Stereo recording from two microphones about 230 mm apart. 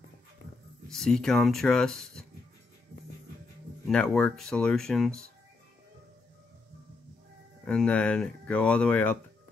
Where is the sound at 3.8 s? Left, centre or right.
Centre.